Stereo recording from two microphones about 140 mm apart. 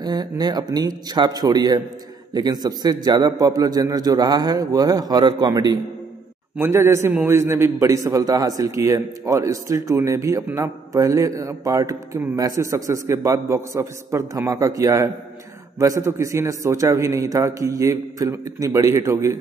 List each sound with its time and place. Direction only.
0.0 s a man's voice: 30° right (ahead or behind)
6.5 s a man's voice: 20° right (ahead or behind)